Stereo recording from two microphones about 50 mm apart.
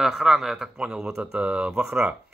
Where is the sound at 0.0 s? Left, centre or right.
Centre.